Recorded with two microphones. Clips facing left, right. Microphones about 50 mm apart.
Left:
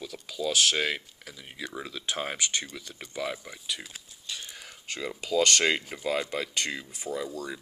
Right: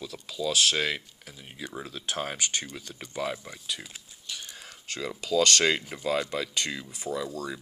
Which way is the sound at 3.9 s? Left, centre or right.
Left.